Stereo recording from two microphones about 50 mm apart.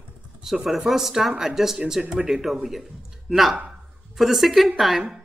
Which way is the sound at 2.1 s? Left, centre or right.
Centre.